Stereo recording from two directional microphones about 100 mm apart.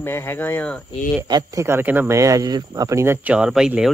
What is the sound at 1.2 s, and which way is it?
Speech, 45° right (ahead or behind).